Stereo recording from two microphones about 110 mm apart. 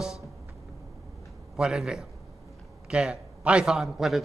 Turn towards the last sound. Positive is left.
turn(degrees=0)  # may be behind; listen again after turning